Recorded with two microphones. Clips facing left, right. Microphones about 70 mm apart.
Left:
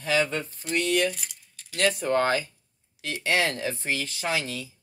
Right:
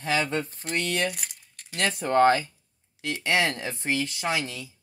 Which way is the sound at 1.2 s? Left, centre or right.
Right.